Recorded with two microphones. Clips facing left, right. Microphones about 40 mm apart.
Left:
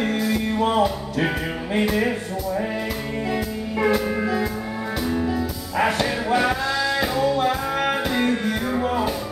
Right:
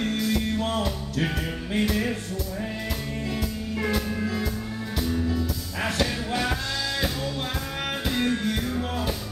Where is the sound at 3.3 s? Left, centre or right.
Centre.